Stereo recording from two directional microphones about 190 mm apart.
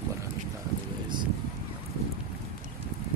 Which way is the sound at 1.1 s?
25° right (ahead or behind).